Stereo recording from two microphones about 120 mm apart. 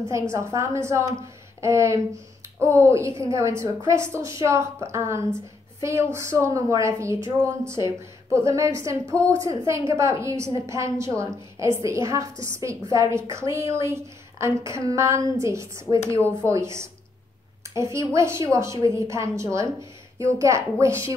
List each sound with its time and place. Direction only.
0.3 s a woman's voice: 25° right (ahead or behind)
17.9 s a woman's voice: 25° right (ahead or behind)